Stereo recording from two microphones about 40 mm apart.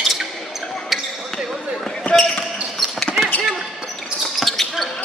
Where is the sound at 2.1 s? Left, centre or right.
Left.